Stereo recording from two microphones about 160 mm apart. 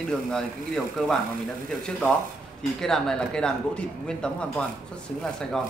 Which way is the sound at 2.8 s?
5° left (ahead or behind).